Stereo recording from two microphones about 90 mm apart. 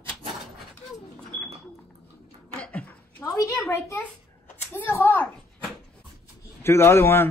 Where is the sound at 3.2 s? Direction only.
35° left (ahead or behind).